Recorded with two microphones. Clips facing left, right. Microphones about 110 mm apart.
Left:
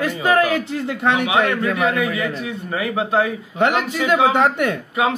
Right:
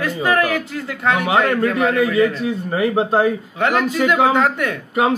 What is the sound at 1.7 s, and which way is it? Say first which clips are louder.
Speech: right 4 dB; 35° right (ahead or behind).